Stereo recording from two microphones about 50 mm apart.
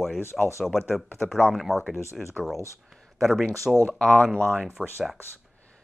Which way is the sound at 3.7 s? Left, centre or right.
Centre.